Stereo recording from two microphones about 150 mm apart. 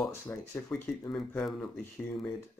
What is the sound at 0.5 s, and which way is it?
Speech, 15° left (ahead or behind).